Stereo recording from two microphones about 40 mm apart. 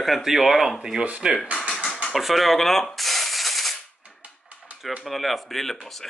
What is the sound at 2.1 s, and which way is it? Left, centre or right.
Maraca, centre.